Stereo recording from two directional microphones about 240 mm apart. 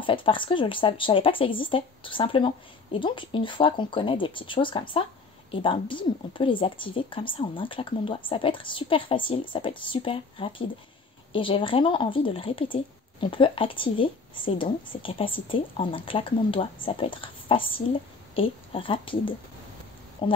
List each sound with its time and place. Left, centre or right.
0.0 s speech: left